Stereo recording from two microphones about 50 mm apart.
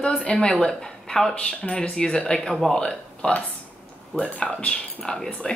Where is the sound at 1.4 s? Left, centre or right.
Centre.